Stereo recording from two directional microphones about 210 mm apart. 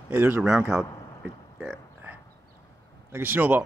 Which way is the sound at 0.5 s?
10° right (ahead or behind).